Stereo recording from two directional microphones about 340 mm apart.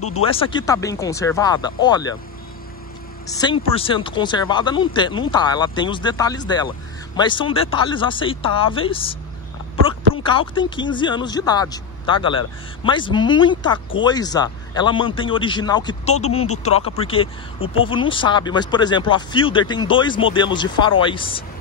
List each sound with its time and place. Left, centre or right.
0.2 s speech: centre
3.3 s speech: centre
10.2 s speech: centre